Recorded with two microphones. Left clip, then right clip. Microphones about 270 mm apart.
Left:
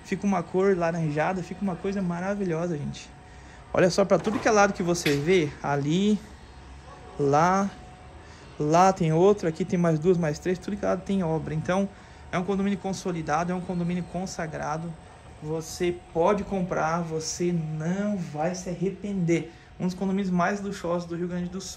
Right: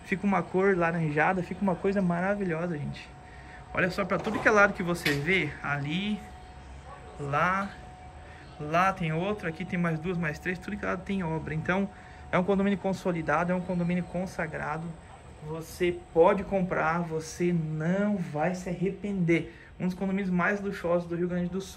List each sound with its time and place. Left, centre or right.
0.1 s speech: centre
7.2 s speech: centre
8.6 s speech: centre